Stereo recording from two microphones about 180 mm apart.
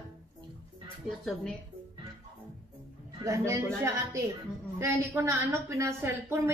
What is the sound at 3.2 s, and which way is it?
A woman's voice, 15° right (ahead or behind).